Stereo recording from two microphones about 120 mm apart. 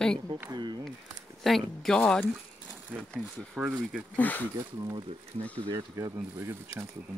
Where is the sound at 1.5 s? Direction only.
5° left (ahead or behind).